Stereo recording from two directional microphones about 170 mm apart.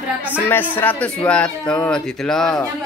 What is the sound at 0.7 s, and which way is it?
Speech, 10° left (ahead or behind).